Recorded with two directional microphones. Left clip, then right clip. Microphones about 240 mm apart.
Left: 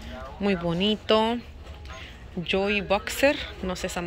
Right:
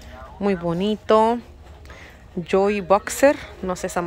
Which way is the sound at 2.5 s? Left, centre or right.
Centre.